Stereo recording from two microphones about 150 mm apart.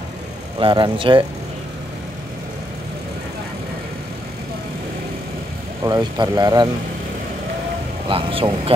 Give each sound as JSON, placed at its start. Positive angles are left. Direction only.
{"t": 0.6, "sound": "a man's voice", "side_deg": -30}
{"t": 5.9, "sound": "speech", "side_deg": -20}
{"t": 8.1, "sound": "a man's voice", "side_deg": -35}